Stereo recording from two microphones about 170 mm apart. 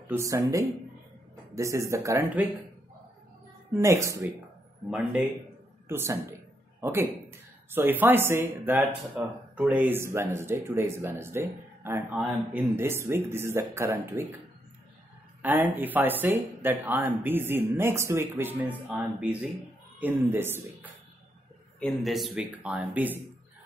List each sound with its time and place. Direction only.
0.1 s speech: 20° right (ahead or behind)
3.7 s speech: 15° right (ahead or behind)
5.9 s a man's voice: 15° right (ahead or behind)
15.4 s speech: 10° right (ahead or behind)
21.7 s speech: centre (ahead or behind)